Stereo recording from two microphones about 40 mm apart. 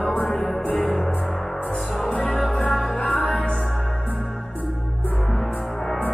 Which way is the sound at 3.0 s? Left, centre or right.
Left.